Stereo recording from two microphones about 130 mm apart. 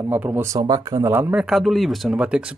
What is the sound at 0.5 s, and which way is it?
Speech, 30° right (ahead or behind).